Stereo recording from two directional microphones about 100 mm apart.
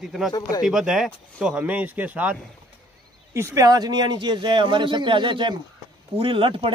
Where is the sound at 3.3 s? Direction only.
30° right (ahead or behind).